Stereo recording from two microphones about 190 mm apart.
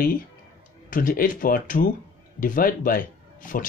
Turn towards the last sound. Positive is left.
turn(degrees=45)  # may be behind; listen again after turning